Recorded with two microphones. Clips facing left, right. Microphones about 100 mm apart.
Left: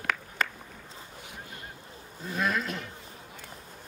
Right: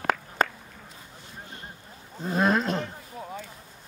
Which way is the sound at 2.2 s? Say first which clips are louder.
Right 6 dB; 35° right (ahead or behind).